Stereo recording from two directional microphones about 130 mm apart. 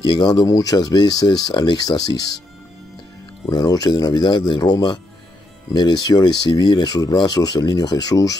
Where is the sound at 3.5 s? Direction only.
30° left (ahead or behind).